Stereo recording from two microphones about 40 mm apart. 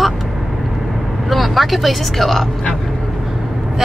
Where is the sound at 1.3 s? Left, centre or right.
Centre.